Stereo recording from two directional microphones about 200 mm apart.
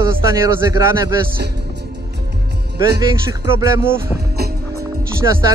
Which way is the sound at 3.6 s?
15° right (ahead or behind).